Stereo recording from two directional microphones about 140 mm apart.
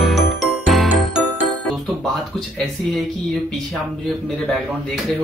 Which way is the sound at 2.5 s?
Centre (ahead or behind).